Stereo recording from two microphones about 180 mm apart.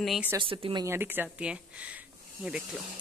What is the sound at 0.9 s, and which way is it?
Speech, 10° right (ahead or behind).